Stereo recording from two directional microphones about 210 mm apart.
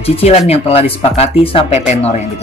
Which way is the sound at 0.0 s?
30° left (ahead or behind).